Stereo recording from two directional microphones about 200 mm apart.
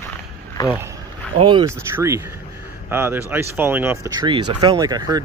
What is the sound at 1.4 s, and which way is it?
Speech, 25° right (ahead or behind).